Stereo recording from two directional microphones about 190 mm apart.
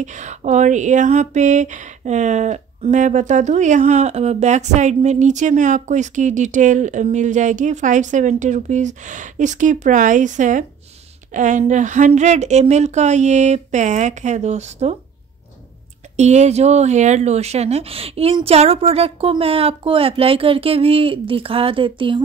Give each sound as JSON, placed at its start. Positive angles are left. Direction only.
{"t": 0.0, "sound": "speech", "side_deg": -40}
{"t": 16.2, "sound": "speech", "side_deg": -35}